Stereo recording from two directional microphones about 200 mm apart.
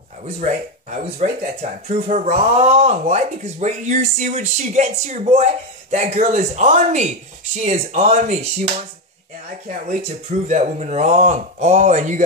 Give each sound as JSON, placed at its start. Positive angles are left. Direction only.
{"t": 0.2, "sound": "speech", "side_deg": -35}
{"t": 9.7, "sound": "speech", "side_deg": -35}